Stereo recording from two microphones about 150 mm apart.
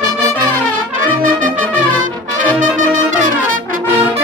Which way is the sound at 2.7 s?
60° right (ahead or behind).